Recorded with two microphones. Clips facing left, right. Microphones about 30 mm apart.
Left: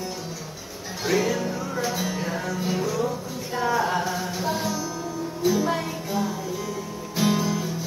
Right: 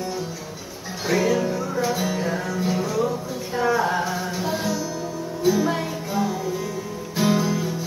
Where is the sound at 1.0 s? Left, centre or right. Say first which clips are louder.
Right 3 dB; centre.